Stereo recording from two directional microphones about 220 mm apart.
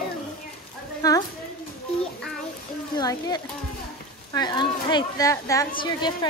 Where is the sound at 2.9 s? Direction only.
20° left (ahead or behind).